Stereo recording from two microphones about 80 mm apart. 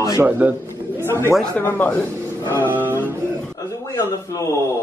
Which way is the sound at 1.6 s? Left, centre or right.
Left.